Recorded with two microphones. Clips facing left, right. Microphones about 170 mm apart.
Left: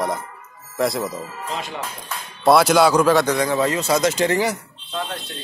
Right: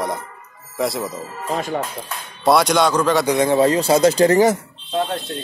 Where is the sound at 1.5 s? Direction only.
45° right (ahead or behind).